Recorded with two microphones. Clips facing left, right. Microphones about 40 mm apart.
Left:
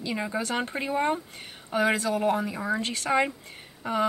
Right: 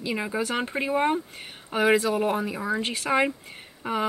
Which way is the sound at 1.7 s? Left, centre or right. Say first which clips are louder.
Right 3 dB; right.